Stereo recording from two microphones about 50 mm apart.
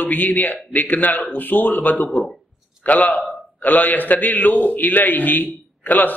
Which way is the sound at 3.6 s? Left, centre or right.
Left.